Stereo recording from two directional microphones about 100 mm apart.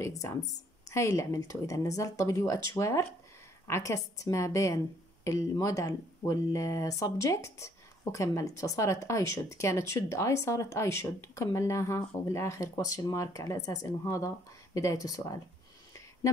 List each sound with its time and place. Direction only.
0.0 s speech: 30° left (ahead or behind)